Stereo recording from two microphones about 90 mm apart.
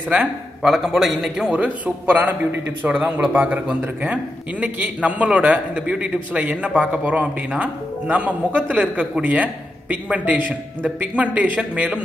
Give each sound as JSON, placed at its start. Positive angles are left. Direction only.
{"t": 0.1, "sound": "a man's voice", "side_deg": -15}
{"t": 0.7, "sound": "a man's voice", "side_deg": 0}
{"t": 1.5, "sound": "a man's voice", "side_deg": -15}